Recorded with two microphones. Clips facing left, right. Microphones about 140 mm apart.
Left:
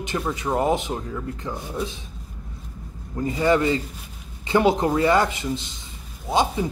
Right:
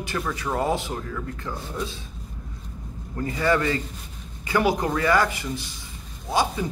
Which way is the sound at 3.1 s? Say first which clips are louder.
Left 3 dB; 20° left (ahead or behind).